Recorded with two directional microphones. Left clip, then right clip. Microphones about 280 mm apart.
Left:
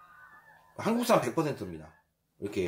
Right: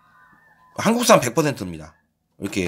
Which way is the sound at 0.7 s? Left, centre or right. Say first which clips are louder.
Right 11 dB; right.